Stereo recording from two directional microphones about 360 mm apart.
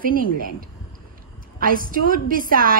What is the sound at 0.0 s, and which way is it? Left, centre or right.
A woman's voice, right.